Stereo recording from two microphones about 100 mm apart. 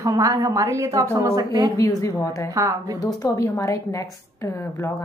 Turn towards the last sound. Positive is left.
turn(degrees=30)  # may be behind; listen again after turning